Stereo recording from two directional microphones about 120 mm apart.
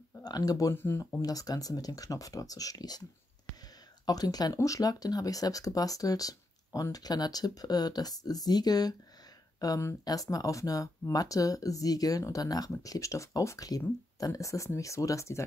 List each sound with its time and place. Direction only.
0.5 s speech: 30° left (ahead or behind)
1.2 s speech: 30° left (ahead or behind)
4.0 s speech: 30° left (ahead or behind)